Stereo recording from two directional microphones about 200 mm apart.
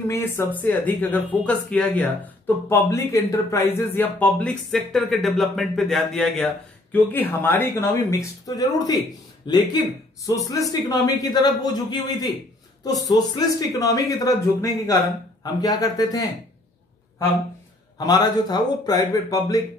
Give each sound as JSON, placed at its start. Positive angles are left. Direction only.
{"t": 0.1, "sound": "speech", "side_deg": 10}
{"t": 17.9, "sound": "speech", "side_deg": 20}